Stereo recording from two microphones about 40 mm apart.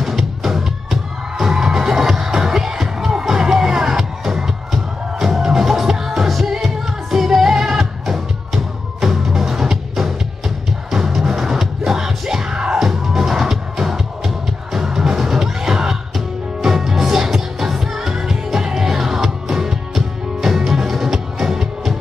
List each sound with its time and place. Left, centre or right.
0.0 s music: centre
12.7 s music: centre